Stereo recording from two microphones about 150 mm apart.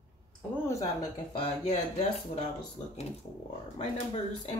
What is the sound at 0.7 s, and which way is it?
Speech, 25° left (ahead or behind).